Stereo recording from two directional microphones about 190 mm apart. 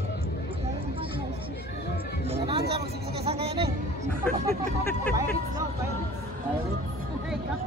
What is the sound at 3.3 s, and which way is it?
Speech, 30° right (ahead or behind).